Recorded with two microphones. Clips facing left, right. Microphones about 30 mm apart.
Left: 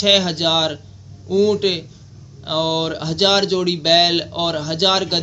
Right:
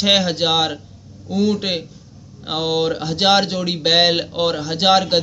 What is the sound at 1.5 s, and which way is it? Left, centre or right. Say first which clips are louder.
Speech: left 3 dB; centre.